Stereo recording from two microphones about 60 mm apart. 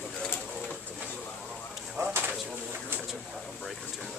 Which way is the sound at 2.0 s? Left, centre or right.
Right.